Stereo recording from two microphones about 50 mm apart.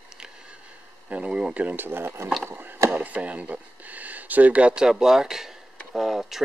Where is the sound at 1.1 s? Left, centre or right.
Right.